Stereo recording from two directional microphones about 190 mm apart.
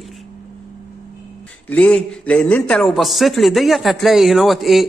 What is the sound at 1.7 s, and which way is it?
A man's voice, 5° left (ahead or behind).